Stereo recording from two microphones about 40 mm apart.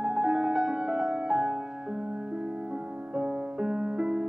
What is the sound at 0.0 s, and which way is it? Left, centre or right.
Music, centre.